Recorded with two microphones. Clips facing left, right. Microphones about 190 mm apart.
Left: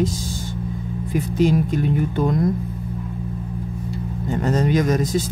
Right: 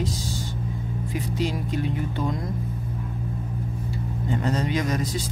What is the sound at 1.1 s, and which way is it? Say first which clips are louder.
Speech: left 10 dB; 50° left (ahead or behind).